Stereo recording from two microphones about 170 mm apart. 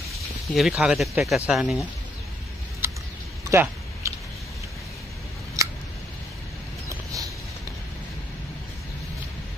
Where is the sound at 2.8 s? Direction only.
15° right (ahead or behind).